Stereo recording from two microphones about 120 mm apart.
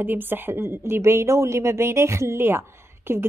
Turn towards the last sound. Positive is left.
turn(degrees=-20)  # may be behind; listen again after turning